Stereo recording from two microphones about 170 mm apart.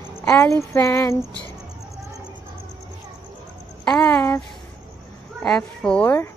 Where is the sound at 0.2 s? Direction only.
15° left (ahead or behind).